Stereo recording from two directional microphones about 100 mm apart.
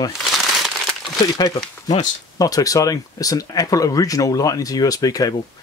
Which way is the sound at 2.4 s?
35° left (ahead or behind).